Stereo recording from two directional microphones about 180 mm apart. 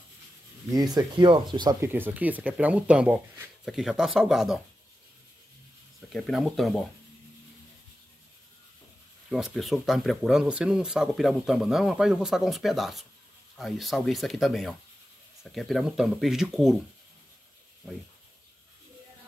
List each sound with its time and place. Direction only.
0.7 s speech: 20° right (ahead or behind)
1.9 s speech: 10° right (ahead or behind)
5.9 s speech: centre (ahead or behind)
9.3 s speech: centre (ahead or behind)